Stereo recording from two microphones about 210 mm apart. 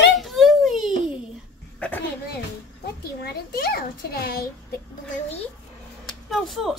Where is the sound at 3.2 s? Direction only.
45° left (ahead or behind).